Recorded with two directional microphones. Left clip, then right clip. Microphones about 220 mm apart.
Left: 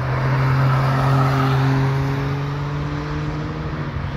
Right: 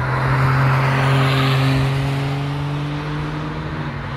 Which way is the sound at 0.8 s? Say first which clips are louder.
Right 2 dB; 15° right (ahead or behind).